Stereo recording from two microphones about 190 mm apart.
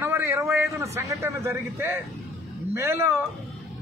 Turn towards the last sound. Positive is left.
turn(degrees=-15)  # may be behind; listen again after turning